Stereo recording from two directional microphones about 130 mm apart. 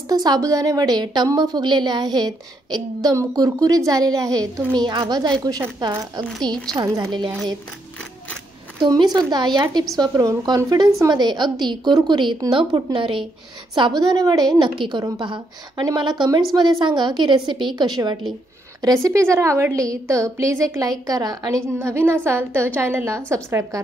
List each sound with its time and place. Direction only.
0.1 s a woman's voice: 30° right (ahead or behind)
8.8 s a woman's voice: 30° right (ahead or behind)
21.7 s a woman's voice: 20° right (ahead or behind)